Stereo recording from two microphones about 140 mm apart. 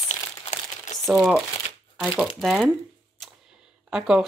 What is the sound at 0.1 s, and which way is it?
Crumpling, 55° left (ahead or behind).